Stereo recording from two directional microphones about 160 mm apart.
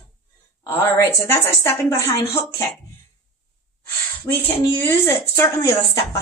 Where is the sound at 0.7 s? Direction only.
20° left (ahead or behind).